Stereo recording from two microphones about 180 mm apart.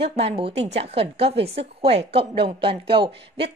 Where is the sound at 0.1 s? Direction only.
35° right (ahead or behind).